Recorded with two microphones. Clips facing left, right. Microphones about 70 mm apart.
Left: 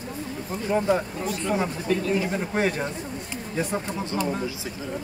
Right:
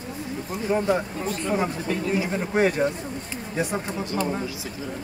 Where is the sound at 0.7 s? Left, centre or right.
Centre.